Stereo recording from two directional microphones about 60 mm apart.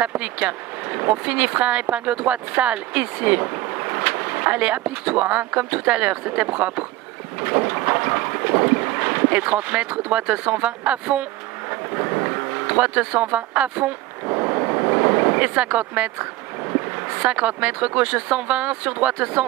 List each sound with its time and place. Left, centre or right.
0.2 s speech: right
7.3 s boat: right
11.7 s speech: right
14.2 s speech: right